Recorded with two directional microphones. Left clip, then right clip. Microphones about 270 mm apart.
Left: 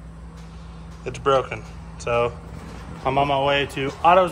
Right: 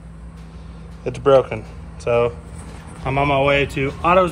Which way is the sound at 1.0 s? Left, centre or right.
Centre.